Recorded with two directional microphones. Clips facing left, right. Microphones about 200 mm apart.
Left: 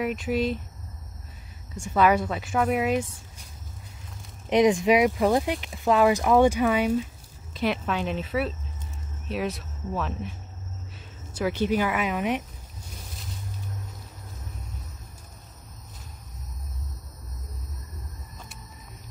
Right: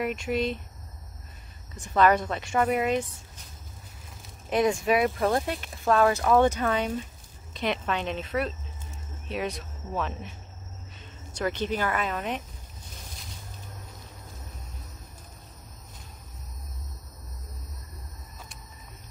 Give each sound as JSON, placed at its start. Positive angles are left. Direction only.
{"t": 0.0, "sound": "a woman's voice", "side_deg": 0}
{"t": 1.8, "sound": "a woman's voice", "side_deg": 10}
{"t": 4.5, "sound": "a woman's voice", "side_deg": 15}
{"t": 11.3, "sound": "speech", "side_deg": 10}